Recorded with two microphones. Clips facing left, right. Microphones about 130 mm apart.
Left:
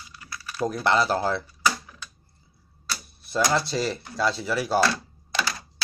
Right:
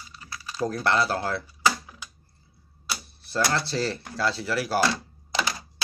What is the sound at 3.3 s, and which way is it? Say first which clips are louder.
Speech: left 2 dB; 15° left (ahead or behind).